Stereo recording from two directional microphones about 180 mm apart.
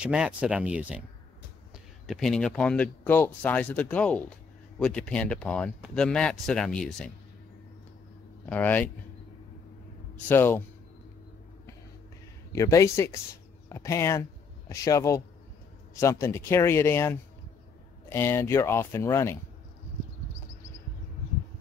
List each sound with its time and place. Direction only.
0.0 s speech: 5° right (ahead or behind)
2.0 s speech: centre (ahead or behind)
8.5 s speech: 10° left (ahead or behind)
10.1 s speech: 10° left (ahead or behind)
12.5 s speech: 15° left (ahead or behind)